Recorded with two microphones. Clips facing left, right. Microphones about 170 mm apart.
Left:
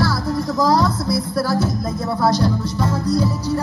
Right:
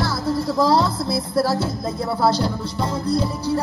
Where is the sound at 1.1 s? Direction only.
25° right (ahead or behind).